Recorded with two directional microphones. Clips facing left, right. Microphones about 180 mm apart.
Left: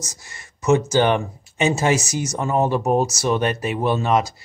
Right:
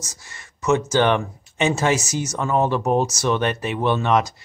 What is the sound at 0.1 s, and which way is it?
Speech, 15° left (ahead or behind).